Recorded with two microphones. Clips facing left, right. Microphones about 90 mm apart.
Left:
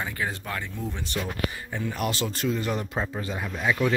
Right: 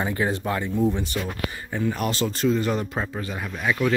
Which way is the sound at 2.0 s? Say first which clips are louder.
Right 3 dB; 10° left (ahead or behind).